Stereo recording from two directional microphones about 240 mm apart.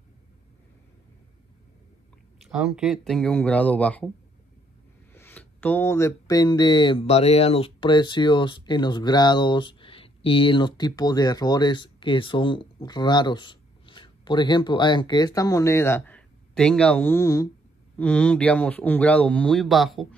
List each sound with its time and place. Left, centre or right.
2.5 s speech: centre
5.1 s speech: centre